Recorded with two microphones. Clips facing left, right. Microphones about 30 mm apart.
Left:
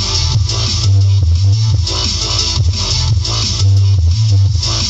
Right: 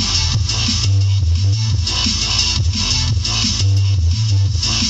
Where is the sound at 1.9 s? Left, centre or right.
Left.